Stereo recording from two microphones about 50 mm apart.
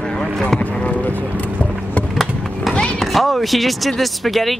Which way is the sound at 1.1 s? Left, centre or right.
Right.